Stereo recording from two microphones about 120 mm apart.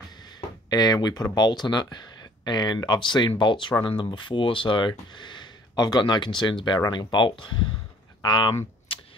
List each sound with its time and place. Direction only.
0.7 s speech: 35° left (ahead or behind)
8.9 s typewriter: 50° left (ahead or behind)